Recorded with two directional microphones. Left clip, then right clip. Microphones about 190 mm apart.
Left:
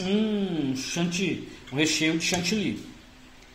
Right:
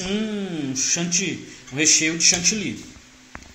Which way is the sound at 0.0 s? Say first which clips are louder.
Even; 5° left (ahead or behind).